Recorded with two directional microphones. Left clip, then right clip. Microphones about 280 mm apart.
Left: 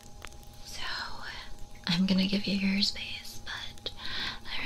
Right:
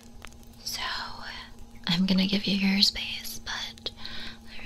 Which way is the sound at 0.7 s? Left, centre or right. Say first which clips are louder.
Right 4 dB; centre.